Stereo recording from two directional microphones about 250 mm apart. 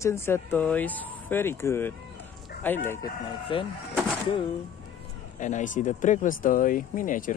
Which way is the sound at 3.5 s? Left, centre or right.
Centre.